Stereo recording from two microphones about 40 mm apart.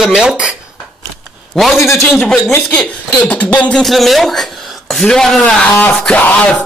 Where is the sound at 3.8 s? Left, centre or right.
Centre.